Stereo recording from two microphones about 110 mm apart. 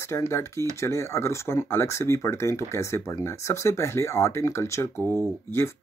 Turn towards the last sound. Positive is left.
turn(degrees=20)  # may be behind; listen again after turning